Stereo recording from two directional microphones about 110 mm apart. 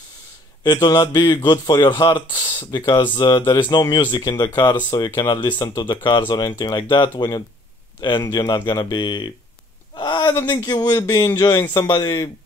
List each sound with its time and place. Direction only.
0.7 s speech: 40° left (ahead or behind)